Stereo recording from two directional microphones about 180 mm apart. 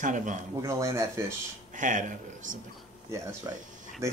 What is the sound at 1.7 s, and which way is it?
Speech, 45° right (ahead or behind).